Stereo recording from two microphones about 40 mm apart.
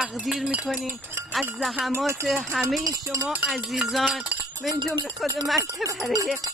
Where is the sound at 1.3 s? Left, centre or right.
Centre.